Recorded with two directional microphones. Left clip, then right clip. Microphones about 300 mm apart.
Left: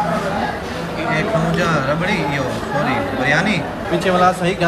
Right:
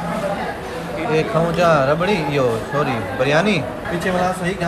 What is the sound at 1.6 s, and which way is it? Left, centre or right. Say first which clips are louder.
Speech: right 3 dB; centre.